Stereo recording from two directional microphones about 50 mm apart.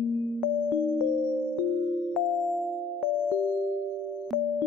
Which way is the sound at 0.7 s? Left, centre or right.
Left.